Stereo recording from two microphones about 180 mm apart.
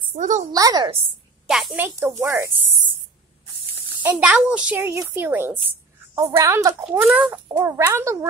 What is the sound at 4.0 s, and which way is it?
A woman's voice, 10° right (ahead or behind).